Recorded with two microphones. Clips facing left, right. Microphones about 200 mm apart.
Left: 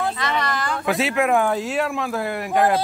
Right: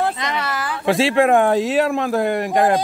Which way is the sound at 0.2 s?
10° right (ahead or behind).